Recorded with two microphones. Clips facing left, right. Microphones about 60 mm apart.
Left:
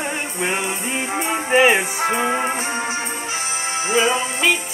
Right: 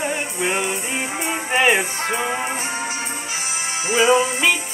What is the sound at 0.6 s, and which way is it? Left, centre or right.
Music, left.